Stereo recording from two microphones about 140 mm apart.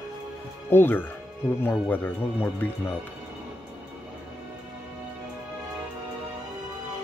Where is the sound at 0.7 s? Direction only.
15° left (ahead or behind).